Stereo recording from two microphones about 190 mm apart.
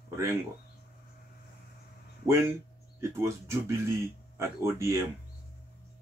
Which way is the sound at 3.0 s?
15° right (ahead or behind).